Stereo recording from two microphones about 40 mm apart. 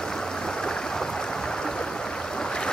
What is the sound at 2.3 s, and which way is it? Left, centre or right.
Boat, centre.